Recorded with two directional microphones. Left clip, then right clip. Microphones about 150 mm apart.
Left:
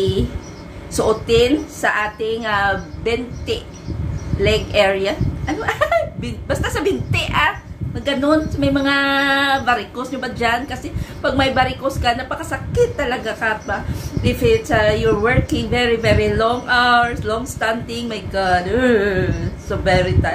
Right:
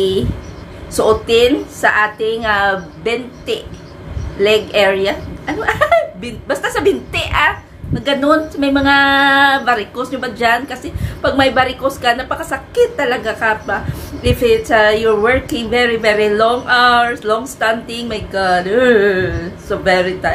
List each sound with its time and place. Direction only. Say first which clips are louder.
0.9 s a woman's voice: right 3 dB; 20° right (ahead or behind)